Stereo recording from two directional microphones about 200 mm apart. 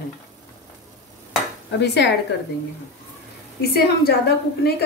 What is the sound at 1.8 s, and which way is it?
Speech, 55° left (ahead or behind).